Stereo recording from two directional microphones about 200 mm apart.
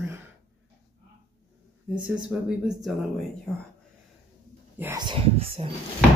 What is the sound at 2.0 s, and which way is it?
Speech, 5° right (ahead or behind).